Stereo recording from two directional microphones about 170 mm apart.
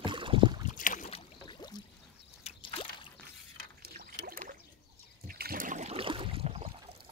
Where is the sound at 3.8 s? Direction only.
65° right (ahead or behind); by 6.7 s 35° right (ahead or behind).